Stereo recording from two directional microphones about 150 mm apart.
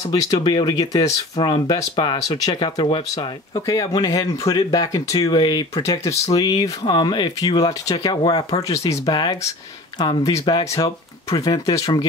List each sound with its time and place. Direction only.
0.1 s speech: 30° left (ahead or behind)
8.6 s speech: 20° left (ahead or behind)